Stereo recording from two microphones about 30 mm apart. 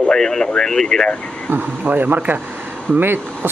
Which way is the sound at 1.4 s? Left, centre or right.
Right.